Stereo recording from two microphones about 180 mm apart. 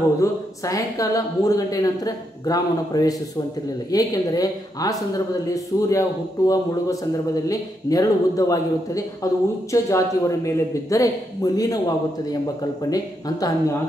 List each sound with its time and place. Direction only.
0.2 s speech: 20° left (ahead or behind)
12.9 s speech: 20° left (ahead or behind)